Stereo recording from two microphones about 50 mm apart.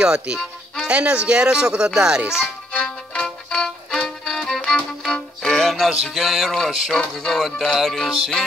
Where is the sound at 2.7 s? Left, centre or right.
Centre.